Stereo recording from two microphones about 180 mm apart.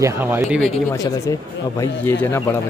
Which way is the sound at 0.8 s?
20° left (ahead or behind).